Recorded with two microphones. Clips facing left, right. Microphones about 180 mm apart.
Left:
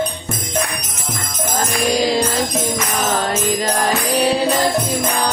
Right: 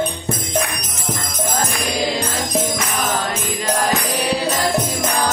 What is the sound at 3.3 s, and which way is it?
Music, 35° left (ahead or behind).